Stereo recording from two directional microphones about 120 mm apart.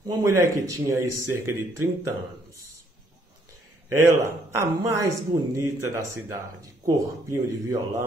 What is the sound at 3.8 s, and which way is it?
Speech, 25° right (ahead or behind).